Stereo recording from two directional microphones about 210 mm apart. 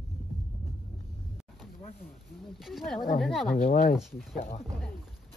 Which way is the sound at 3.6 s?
45° left (ahead or behind).